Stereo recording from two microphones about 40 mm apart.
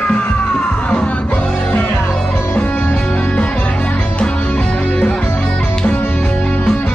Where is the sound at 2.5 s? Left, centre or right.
Left.